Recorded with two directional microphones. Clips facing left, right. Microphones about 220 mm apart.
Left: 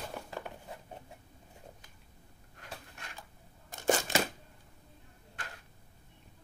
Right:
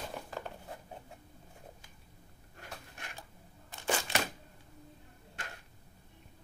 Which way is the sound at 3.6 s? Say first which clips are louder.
Left 5 dB; 45° left (ahead or behind).